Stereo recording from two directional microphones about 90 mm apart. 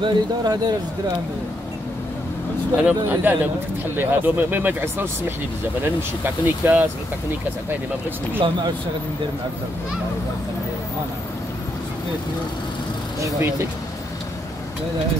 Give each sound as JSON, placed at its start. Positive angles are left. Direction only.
{"t": 0.0, "sound": "speech", "side_deg": -50}
{"t": 2.8, "sound": "speech", "side_deg": -20}
{"t": 8.4, "sound": "speech", "side_deg": -65}
{"t": 13.2, "sound": "speech", "side_deg": -30}